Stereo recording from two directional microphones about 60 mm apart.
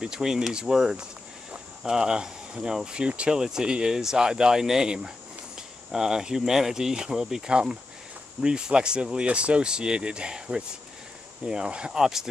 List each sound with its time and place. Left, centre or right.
0.0 s speech: centre